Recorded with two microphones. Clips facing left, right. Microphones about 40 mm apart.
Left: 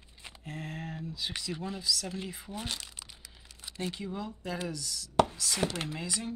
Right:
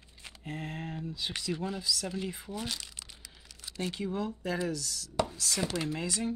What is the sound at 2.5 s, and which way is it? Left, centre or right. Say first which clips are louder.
Chopping: right 1 dB; centre.